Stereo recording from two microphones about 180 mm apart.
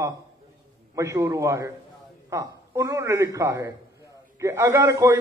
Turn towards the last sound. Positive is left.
turn(degrees=-15)  # may be behind; listen again after turning